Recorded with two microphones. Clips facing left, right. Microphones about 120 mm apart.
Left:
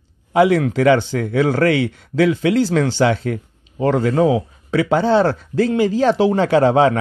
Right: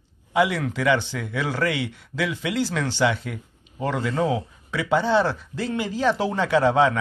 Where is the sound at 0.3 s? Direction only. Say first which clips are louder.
Left 8 dB; 40° left (ahead or behind).